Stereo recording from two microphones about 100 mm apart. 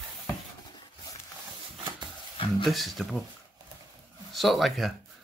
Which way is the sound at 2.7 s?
Centre (ahead or behind).